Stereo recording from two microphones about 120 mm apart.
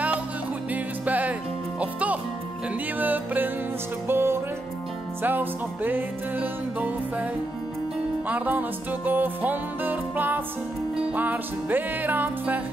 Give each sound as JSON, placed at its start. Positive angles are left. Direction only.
{"t": 1.0, "sound": "music", "side_deg": -15}
{"t": 8.3, "sound": "music", "side_deg": -15}